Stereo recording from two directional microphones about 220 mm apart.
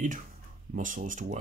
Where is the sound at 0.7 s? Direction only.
35° right (ahead or behind).